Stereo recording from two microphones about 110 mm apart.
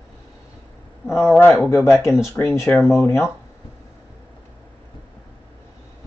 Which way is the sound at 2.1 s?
20° left (ahead or behind).